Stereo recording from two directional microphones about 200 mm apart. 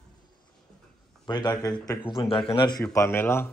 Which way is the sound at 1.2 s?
20° left (ahead or behind).